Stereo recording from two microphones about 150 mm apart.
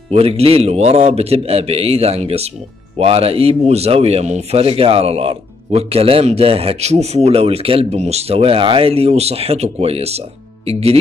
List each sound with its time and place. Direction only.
0.1 s speech: 40° right (ahead or behind)